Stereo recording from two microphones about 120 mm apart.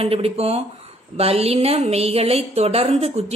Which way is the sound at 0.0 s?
55° right (ahead or behind).